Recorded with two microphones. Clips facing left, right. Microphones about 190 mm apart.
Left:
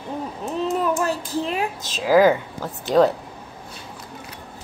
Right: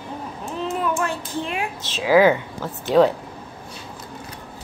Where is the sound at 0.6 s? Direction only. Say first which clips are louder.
Left 2 dB; 40° left (ahead or behind).